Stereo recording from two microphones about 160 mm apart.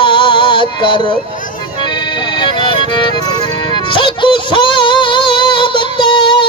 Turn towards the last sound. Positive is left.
turn(degrees=30)  # may be behind; listen again after turning